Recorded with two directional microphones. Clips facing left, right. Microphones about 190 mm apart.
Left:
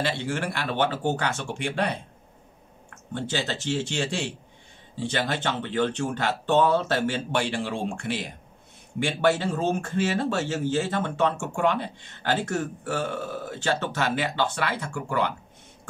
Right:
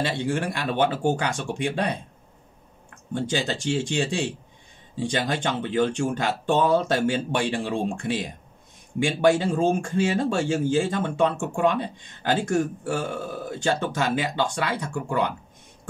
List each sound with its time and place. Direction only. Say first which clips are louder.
0.2 s speech: right 3 dB; 15° right (ahead or behind)